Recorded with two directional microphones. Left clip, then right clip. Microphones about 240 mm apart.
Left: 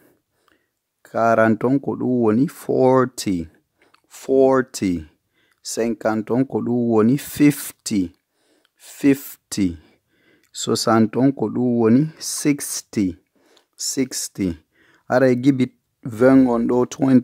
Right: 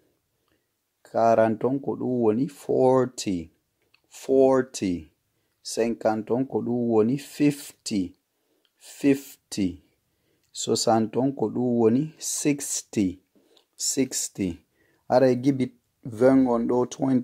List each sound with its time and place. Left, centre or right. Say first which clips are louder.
1.0 s speech: left 3 dB; left